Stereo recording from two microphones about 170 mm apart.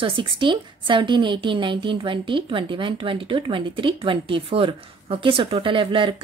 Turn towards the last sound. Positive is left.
turn(degrees=-30)  # may be behind; listen again after turning